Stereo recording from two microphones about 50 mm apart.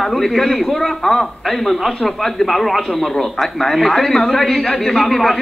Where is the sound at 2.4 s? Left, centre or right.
Centre.